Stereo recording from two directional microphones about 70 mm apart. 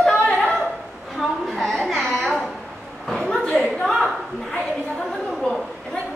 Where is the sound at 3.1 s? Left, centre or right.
Centre.